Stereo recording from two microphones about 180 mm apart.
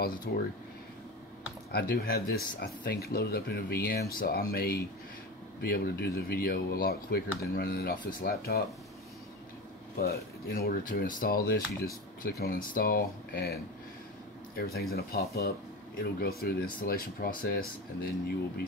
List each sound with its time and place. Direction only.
0.0 s speech: 55° left (ahead or behind)
1.7 s speech: 60° left (ahead or behind)
9.9 s speech: 60° left (ahead or behind)